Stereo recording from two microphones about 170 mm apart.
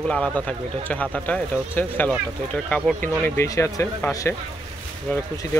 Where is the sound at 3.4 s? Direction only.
20° left (ahead or behind).